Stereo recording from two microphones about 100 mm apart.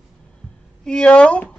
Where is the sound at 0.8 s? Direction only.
10° left (ahead or behind).